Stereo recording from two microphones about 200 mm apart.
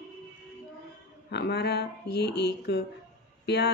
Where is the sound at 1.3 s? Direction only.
55° left (ahead or behind).